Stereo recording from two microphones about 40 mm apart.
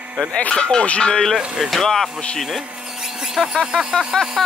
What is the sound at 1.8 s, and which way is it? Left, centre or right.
Speech, centre.